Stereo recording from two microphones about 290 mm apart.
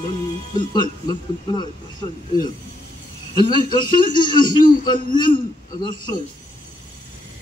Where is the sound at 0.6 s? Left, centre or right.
Centre.